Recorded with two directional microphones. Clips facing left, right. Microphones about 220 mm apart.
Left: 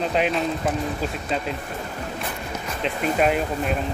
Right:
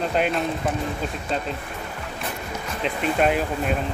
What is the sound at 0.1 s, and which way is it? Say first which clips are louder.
Speech: even; centre (ahead or behind).